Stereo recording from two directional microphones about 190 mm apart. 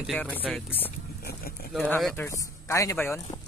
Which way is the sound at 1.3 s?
50° left (ahead or behind).